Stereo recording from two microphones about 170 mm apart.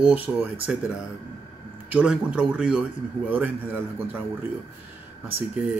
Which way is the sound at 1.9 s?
5° right (ahead or behind).